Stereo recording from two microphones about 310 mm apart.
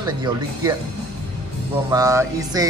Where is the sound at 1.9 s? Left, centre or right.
Centre.